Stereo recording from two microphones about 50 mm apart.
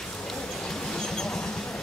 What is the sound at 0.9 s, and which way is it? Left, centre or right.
Vehicle, centre.